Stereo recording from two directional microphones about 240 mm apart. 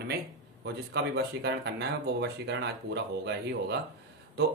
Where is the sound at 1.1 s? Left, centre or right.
Right.